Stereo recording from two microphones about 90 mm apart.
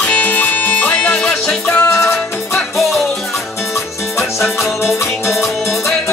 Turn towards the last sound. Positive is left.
turn(degrees=0)  # may be behind; listen again after turning